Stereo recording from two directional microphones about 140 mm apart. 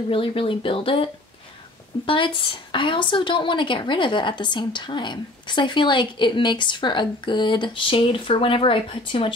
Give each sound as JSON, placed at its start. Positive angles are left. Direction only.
{"t": 0.1, "sound": "a woman's voice", "side_deg": 40}